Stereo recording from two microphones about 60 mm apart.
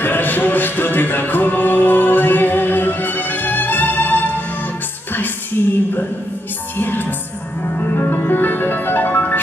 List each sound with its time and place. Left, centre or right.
0.0 s music: left
6.8 s music: left